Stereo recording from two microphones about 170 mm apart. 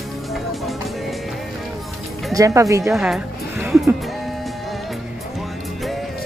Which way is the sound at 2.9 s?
5° right (ahead or behind).